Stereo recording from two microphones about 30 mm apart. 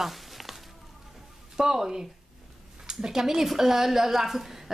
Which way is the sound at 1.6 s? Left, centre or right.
Centre.